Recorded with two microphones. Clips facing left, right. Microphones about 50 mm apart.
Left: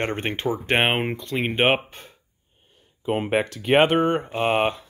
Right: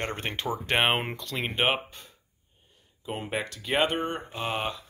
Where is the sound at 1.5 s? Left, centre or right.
Left.